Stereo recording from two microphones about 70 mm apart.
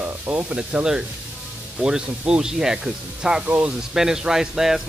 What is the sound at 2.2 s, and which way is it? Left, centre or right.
Speech, centre.